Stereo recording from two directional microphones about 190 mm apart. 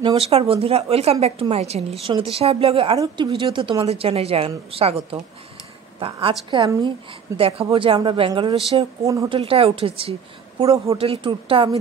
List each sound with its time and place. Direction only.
0.0 s a woman's voice: 30° right (ahead or behind)
5.9 s a woman's voice: 25° right (ahead or behind)
9.0 s speech: 15° right (ahead or behind)
9.4 s a woman's voice: 30° right (ahead or behind)
10.6 s a woman's voice: 20° right (ahead or behind)
11.0 s a woman's voice: 30° right (ahead or behind)